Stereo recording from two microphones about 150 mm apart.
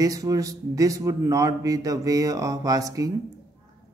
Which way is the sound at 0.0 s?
25° right (ahead or behind).